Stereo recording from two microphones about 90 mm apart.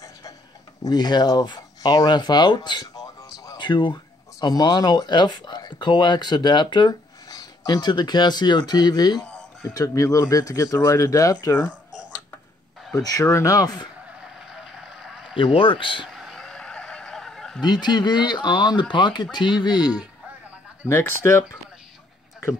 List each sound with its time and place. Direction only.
0.8 s speech: 50° left (ahead or behind)
3.6 s speech: 60° left (ahead or behind)
9.2 s a sound: 10° left (ahead or behind)
9.8 s speech: 35° left (ahead or behind)
12.9 s speech: 40° left (ahead or behind)
14.2 s vehicle: 5° right (ahead or behind)
15.3 s a man's voice: 75° left (ahead or behind)
16.1 s a sound: centre (ahead or behind)
17.6 s speech: 55° left (ahead or behind)
20.9 s speech: 25° left (ahead or behind)